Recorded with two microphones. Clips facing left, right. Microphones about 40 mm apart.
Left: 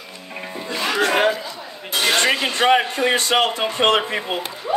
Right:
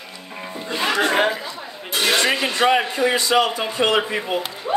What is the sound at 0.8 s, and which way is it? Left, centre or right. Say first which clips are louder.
Music: even; right.